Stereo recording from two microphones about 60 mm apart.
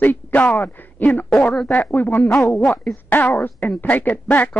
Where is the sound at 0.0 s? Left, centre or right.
Left.